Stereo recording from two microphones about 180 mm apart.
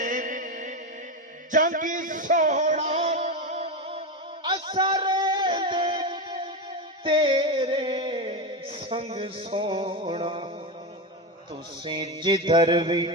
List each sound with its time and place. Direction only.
0.0 s music: 45° right (ahead or behind)
1.5 s a sound: 45° right (ahead or behind); by 6.5 s 30° right (ahead or behind)
7.1 s music: 30° right (ahead or behind)
11.8 s mantra: 25° right (ahead or behind)